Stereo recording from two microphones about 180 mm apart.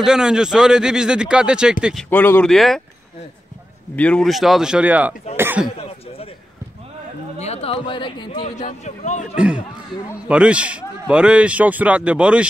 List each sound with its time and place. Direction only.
0.0 s speech: 5° right (ahead or behind)
2.0 s speech: 10° left (ahead or behind)
3.9 s speech: 5° left (ahead or behind); by 5.1 s 10° right (ahead or behind)
5.4 s cough: 10° right (ahead or behind)
5.8 s a sound: 35° left (ahead or behind)
7.3 s speech: 35° left (ahead or behind)
8.5 s speech: 40° left (ahead or behind)
10.2 s a man's voice: 5° right (ahead or behind)